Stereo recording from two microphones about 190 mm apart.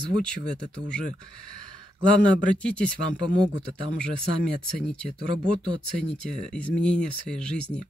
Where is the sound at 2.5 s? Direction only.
5° left (ahead or behind).